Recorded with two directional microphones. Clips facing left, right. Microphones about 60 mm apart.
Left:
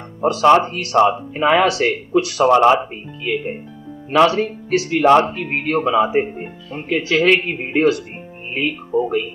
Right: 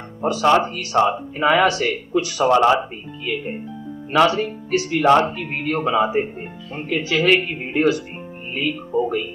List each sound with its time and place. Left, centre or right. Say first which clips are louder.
0.2 s a man's voice: left 4 dB; left
4.4 s speech: left 3 dB; left
5.0 s speech: left 2 dB; left